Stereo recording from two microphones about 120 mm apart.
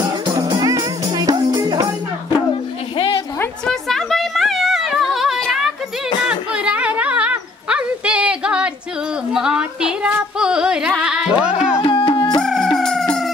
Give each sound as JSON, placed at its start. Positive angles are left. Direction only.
{"t": 0.4, "sound": "music", "side_deg": -35}
{"t": 3.6, "sound": "a sound", "side_deg": 0}
{"t": 10.4, "sound": "music", "side_deg": -5}
{"t": 11.8, "sound": "music", "side_deg": 45}
{"t": 12.4, "sound": "crowing", "side_deg": 0}